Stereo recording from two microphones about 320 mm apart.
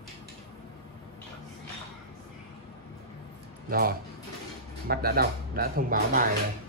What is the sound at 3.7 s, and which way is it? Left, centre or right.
Speech, right.